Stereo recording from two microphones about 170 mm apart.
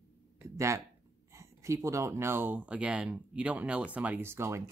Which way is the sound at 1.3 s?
15° right (ahead or behind).